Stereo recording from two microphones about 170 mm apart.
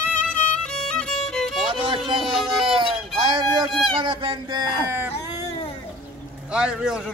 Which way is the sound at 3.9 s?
30° right (ahead or behind).